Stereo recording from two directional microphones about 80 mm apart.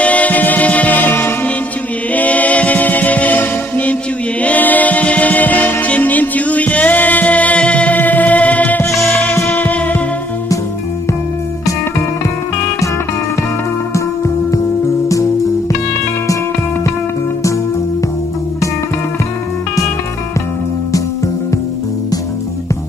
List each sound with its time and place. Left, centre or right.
0.0 s music: centre